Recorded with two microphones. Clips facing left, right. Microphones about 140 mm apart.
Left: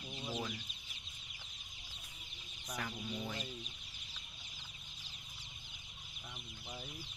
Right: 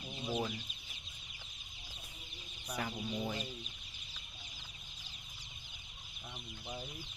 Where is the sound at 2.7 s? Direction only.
25° right (ahead or behind).